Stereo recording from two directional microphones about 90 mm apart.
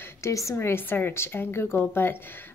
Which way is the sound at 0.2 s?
35° left (ahead or behind).